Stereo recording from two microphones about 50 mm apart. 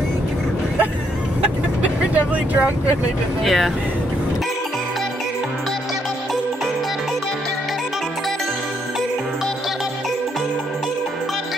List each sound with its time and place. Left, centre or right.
1.4 s vehicle: right
3.4 s speech: centre